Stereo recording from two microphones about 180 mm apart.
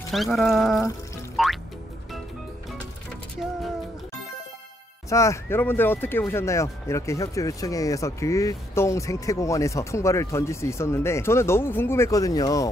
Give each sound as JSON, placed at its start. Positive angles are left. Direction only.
{"t": 0.1, "sound": "speech", "side_deg": 0}
{"t": 1.3, "sound": "music", "side_deg": 0}
{"t": 5.1, "sound": "speech", "side_deg": 15}